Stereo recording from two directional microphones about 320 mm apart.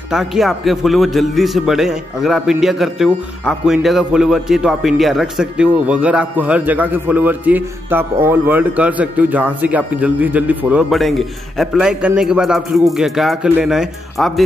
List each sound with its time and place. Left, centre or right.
0.1 s a man's voice: centre